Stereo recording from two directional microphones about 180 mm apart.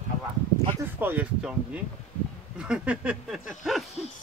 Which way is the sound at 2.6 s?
5° right (ahead or behind).